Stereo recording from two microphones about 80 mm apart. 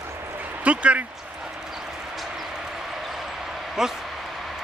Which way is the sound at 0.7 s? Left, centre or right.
Centre.